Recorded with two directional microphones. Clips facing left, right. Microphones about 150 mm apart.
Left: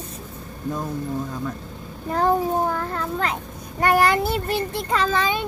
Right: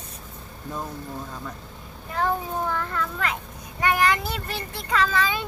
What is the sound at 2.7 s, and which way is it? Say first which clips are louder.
A child's voice: left 3 dB; 35° left (ahead or behind).